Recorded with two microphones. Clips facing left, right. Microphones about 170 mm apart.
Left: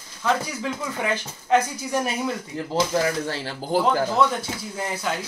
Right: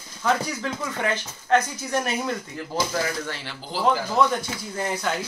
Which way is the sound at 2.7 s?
30° left (ahead or behind).